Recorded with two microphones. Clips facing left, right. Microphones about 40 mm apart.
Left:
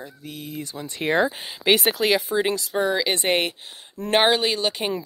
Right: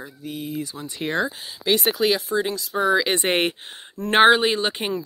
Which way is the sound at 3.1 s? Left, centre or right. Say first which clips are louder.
Right 1 dB; right.